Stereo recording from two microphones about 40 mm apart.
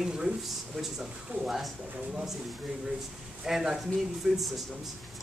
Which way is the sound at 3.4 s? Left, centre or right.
Centre.